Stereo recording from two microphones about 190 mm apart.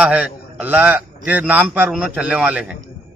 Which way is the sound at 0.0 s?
5° right (ahead or behind).